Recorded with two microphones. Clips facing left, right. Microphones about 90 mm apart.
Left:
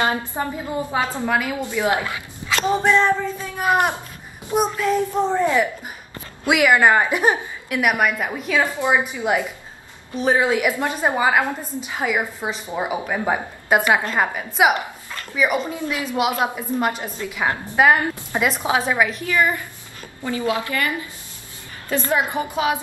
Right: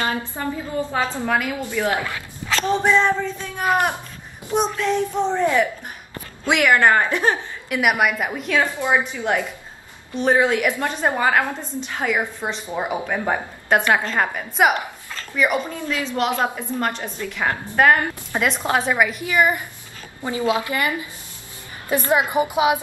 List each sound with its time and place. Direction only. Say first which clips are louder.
0.3 s a woman's voice: even; 25° left (ahead or behind)
2.8 s a woman's voice: even; 5° right (ahead or behind); by 7.3 s 15° left (ahead or behind)
7.7 s a woman's voice: even; 5° right (ahead or behind)
8.7 s a woman's voice: left 1 dB; 15° left (ahead or behind); by 19.2 s centre (ahead or behind)
19.2 s a woman's voice: right 1 dB; 15° right (ahead or behind)